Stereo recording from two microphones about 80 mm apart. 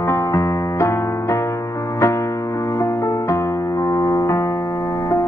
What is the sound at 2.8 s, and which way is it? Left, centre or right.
Music, left.